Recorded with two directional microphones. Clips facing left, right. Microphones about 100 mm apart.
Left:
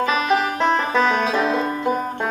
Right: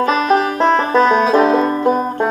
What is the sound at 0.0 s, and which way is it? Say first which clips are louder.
Banjo: right 5 dB; 40° right (ahead or behind).